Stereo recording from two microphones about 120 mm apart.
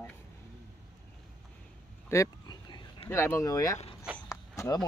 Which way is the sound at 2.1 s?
30° left (ahead or behind).